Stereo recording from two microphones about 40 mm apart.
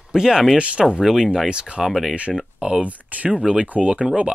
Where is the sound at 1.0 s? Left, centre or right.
Centre.